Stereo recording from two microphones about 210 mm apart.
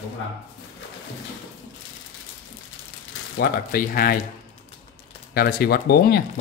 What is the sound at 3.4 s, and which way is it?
Speech, 45° left (ahead or behind).